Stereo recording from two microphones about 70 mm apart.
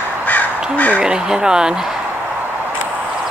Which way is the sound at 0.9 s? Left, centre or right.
Centre.